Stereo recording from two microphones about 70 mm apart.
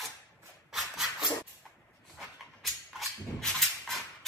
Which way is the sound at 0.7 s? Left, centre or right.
Centre.